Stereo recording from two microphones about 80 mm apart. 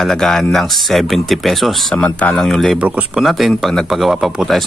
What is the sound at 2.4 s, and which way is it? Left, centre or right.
Speech, centre.